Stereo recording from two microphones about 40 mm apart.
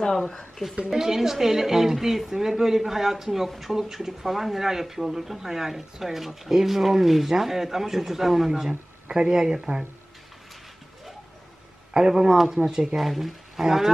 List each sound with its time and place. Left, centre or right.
0.8 s a woman's voice: centre
11.9 s a woman's voice: centre